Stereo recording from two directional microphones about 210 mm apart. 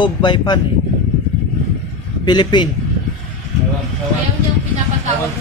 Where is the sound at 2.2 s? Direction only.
20° left (ahead or behind).